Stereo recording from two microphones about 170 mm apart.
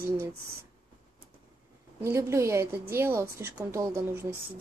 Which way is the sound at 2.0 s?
15° right (ahead or behind).